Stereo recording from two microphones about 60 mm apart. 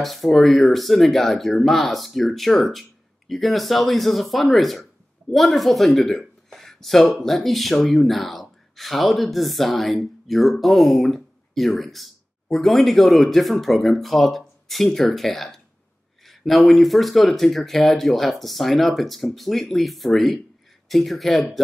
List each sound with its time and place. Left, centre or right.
0.0 s speech: centre